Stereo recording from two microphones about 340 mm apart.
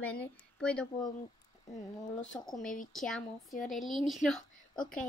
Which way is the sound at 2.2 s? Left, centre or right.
Centre.